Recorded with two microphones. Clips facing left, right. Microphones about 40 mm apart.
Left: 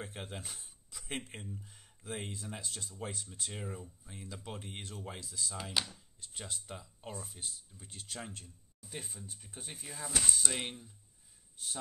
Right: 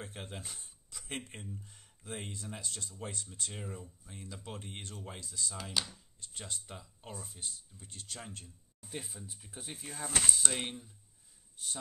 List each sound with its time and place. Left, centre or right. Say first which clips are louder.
0.0 s speech: left 1 dB; centre
9.8 s speech: right 2 dB; right
10.5 s speech: right 1 dB; centre